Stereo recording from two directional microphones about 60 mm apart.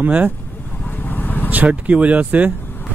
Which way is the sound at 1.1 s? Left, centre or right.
Left.